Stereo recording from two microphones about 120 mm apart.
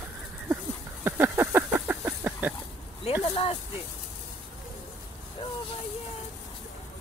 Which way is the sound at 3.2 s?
55° left (ahead or behind).